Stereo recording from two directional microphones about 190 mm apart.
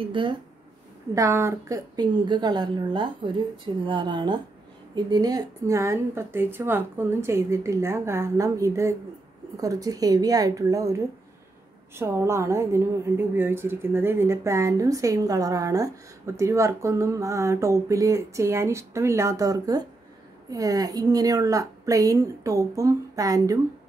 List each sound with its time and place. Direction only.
0.0 s a woman's voice: 25° right (ahead or behind)
1.1 s a woman's voice: 15° right (ahead or behind)